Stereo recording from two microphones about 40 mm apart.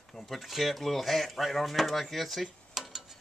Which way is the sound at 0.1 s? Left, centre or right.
Centre.